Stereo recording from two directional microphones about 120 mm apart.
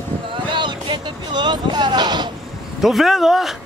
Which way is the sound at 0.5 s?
40° right (ahead or behind).